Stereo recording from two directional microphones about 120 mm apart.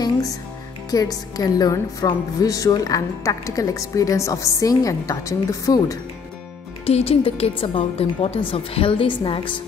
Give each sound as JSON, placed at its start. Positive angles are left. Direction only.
{"t": 0.8, "sound": "a woman's voice", "side_deg": 30}
{"t": 6.9, "sound": "a woman's voice", "side_deg": 55}